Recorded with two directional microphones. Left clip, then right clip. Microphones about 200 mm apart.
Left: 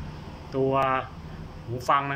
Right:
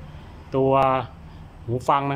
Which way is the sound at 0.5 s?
20° right (ahead or behind).